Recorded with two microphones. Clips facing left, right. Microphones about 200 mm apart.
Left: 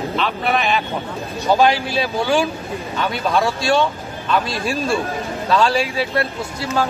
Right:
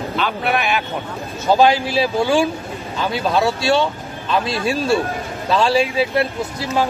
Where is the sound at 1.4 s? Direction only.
30° right (ahead or behind).